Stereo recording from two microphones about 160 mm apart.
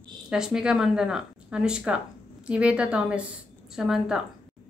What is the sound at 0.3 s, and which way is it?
A woman's voice, 5° right (ahead or behind).